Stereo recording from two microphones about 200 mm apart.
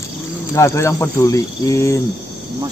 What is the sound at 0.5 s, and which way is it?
Speech, 15° left (ahead or behind).